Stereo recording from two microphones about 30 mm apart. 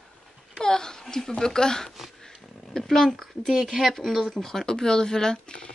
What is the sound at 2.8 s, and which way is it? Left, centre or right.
Speech, centre.